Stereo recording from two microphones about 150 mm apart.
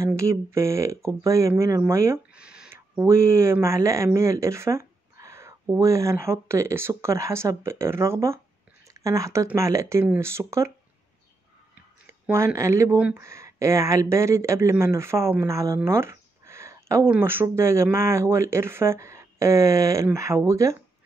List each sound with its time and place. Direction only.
0.0 s speech: 20° right (ahead or behind)
2.3 s a sound: 5° right (ahead or behind)
2.7 s speech: 15° right (ahead or behind)
12.1 s speech: 20° right (ahead or behind)